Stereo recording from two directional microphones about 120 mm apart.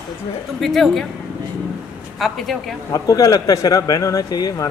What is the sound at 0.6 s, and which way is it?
Speech, centre (ahead or behind).